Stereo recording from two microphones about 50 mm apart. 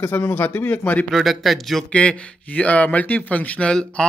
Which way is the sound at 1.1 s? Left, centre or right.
Centre.